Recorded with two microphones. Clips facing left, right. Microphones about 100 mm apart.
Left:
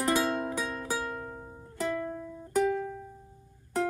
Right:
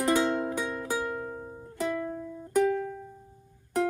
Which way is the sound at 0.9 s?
15° right (ahead or behind).